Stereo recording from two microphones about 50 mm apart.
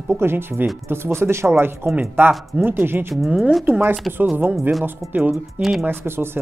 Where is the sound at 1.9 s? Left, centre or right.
Right.